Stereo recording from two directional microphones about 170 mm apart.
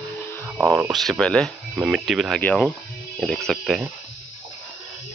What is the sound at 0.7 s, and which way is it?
Speech, 5° right (ahead or behind).